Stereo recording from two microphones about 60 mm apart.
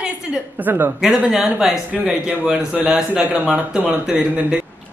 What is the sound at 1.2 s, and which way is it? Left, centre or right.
Speech, centre.